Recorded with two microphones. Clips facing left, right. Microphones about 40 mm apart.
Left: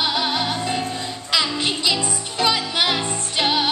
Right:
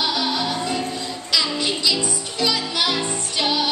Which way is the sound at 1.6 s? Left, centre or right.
Left.